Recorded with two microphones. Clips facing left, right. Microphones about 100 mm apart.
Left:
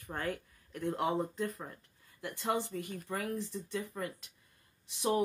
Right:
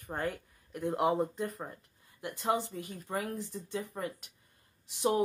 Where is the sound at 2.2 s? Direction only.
20° right (ahead or behind).